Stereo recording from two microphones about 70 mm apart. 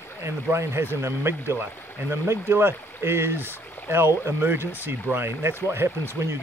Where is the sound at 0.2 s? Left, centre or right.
Right.